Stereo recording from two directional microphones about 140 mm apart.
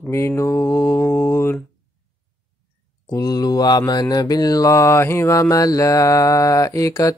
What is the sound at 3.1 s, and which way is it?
Mantra, 25° left (ahead or behind).